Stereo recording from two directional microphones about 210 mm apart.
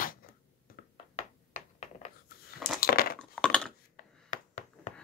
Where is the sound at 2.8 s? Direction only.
45° left (ahead or behind).